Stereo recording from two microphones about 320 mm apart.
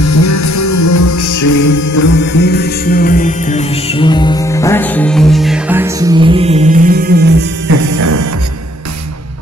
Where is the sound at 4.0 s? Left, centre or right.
Centre; by 7.4 s right.